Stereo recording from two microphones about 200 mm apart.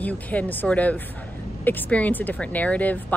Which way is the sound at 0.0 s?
10° left (ahead or behind).